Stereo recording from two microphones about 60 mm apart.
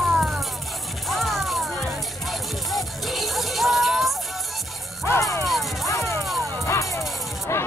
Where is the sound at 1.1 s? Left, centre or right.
Centre.